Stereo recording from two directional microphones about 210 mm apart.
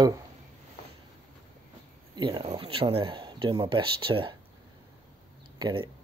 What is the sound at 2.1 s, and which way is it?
Speech, 25° right (ahead or behind).